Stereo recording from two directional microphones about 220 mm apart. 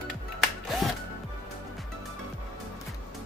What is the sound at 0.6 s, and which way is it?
Music, centre (ahead or behind).